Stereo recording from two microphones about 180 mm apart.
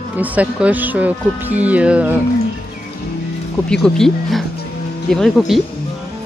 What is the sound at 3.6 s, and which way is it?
Speech, 5° left (ahead or behind).